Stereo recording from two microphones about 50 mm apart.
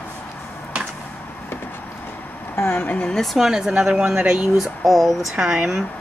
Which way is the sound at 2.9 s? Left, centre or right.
Centre.